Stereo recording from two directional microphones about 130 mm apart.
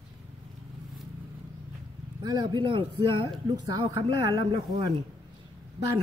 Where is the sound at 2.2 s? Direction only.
35° right (ahead or behind).